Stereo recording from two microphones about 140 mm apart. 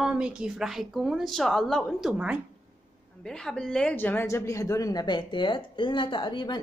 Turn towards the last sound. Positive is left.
turn(degrees=30)  # may be behind; listen again after turning